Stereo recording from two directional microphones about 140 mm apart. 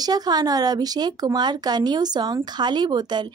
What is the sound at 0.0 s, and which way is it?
Speech, 30° right (ahead or behind).